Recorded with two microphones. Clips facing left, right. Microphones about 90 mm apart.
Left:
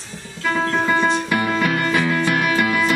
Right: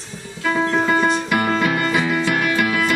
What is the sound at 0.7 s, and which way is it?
Music, 15° right (ahead or behind).